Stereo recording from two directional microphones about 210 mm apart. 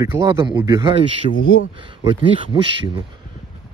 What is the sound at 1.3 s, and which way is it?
Speech, 60° left (ahead or behind).